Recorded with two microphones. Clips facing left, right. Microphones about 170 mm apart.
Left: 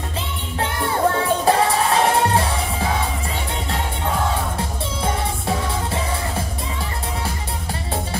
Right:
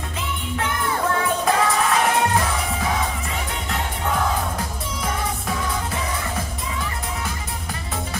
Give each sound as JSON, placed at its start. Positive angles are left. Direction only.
{"t": 0.6, "sound": "music", "side_deg": 30}
{"t": 4.6, "sound": "music", "side_deg": 30}